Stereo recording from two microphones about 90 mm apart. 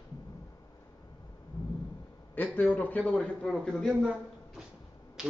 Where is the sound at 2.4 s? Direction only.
20° left (ahead or behind).